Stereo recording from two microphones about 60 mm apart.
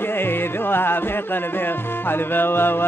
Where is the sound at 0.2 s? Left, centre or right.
Left.